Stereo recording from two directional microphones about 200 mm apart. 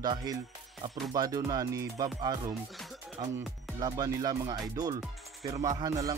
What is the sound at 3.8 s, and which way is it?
Speech, 20° right (ahead or behind).